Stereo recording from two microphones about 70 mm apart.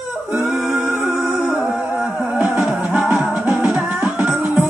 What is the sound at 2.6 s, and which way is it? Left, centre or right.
Music, centre.